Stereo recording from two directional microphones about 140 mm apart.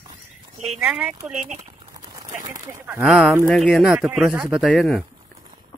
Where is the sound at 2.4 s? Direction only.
20° right (ahead or behind).